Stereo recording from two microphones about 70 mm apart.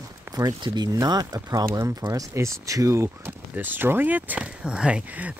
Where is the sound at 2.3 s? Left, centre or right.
Right.